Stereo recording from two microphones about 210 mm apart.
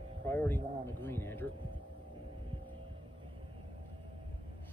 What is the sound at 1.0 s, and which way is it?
Speech, 10° left (ahead or behind).